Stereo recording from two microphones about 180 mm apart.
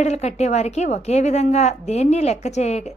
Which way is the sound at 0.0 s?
40° left (ahead or behind).